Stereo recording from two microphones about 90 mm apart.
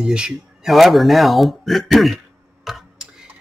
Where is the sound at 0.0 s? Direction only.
10° right (ahead or behind).